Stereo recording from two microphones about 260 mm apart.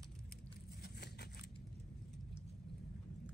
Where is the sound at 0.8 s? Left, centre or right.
Left.